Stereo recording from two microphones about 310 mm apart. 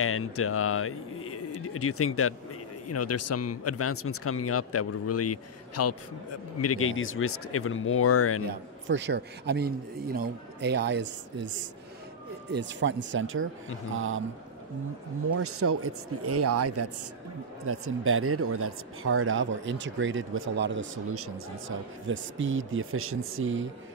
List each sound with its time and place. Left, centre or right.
0.0 s speech: left
8.8 s speech: right
15.3 s speech: right